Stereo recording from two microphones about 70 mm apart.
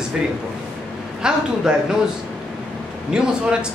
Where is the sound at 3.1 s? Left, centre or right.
Centre.